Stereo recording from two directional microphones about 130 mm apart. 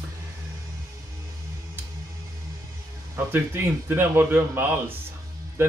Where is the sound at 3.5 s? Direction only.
15° right (ahead or behind).